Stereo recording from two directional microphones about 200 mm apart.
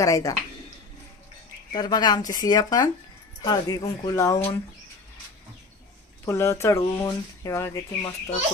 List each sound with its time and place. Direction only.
0.0 s speech: 15° left (ahead or behind)
1.7 s speech: 20° left (ahead or behind)
6.2 s speech: 15° left (ahead or behind)